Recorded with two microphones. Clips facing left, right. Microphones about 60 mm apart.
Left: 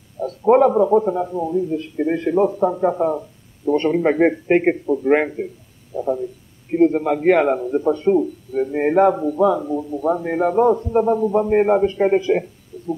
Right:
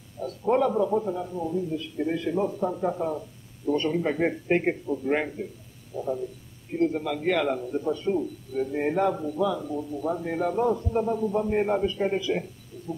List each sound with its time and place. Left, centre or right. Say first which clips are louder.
0.2 s a man's voice: left 10 dB; left